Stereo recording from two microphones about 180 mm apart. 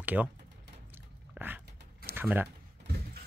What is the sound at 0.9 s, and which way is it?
Biting, 10° right (ahead or behind).